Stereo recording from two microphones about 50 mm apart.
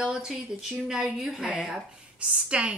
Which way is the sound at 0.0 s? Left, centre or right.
Centre.